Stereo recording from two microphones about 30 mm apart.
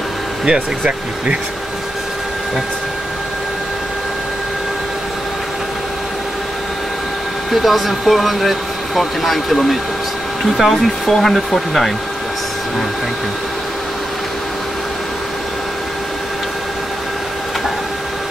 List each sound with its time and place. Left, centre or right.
0.5 s speech: right
7.5 s speech: centre
11.1 s speech: centre